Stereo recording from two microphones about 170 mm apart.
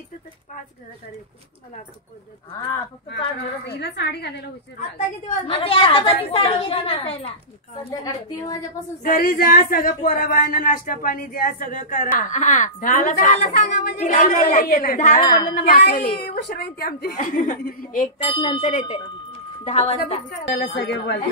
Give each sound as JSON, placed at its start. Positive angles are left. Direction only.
{"t": 3.6, "sound": "a woman's voice", "side_deg": 80}
{"t": 5.5, "sound": "a woman's voice", "side_deg": 35}
{"t": 7.9, "sound": "a woman's voice", "side_deg": 20}
{"t": 9.0, "sound": "speech", "side_deg": 55}
{"t": 13.9, "sound": "speech", "side_deg": 50}
{"t": 18.2, "sound": "a woman's voice", "side_deg": 30}
{"t": 18.6, "sound": "speech", "side_deg": 45}
{"t": 19.6, "sound": "a woman's voice", "side_deg": 35}
{"t": 20.5, "sound": "a woman's voice", "side_deg": 85}